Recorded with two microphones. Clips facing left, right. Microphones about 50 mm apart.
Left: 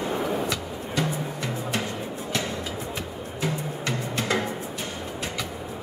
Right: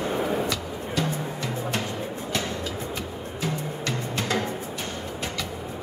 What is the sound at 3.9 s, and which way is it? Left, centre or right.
Music, centre.